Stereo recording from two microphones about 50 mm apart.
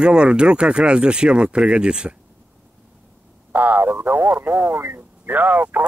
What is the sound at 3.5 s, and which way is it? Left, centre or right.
Speech, right.